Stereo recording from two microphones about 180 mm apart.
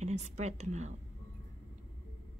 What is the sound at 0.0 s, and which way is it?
Speech, 40° right (ahead or behind).